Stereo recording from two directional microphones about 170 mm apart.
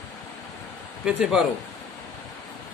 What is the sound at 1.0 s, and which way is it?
Speech, 5° right (ahead or behind).